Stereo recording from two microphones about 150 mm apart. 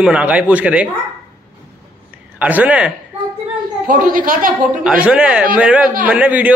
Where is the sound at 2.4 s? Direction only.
10° right (ahead or behind).